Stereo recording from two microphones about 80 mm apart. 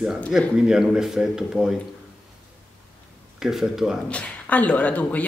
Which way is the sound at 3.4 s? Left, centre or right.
Centre.